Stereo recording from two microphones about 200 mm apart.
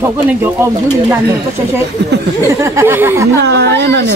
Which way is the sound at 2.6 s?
15° right (ahead or behind).